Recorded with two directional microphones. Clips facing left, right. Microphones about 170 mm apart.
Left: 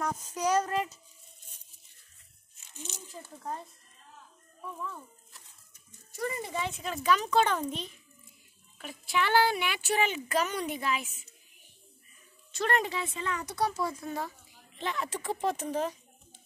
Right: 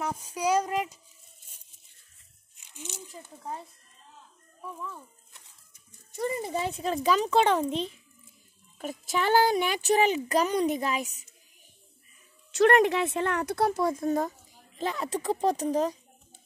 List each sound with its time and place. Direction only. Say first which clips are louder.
0.0 s a woman's voice: right 1 dB; 10° right (ahead or behind)
2.5 s speech: right 2 dB; 15° right (ahead or behind)
6.1 s a child's voice: right 4 dB; 25° right (ahead or behind)
6.5 s a child's voice: right 5 dB; 35° right (ahead or behind)
8.7 s speech: right 2 dB; 40° right (ahead or behind)
12.5 s speech: right 9 dB; 75° right (ahead or behind); by 16.0 s 35° right (ahead or behind)